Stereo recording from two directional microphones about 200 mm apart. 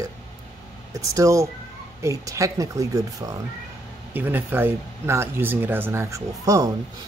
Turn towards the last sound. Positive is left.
turn(degrees=-15)  # may be behind; listen again after turning